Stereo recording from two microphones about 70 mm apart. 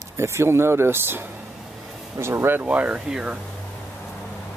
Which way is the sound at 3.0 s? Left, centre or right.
Centre.